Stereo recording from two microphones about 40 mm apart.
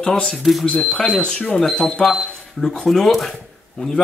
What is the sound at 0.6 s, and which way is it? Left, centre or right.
Speech, centre.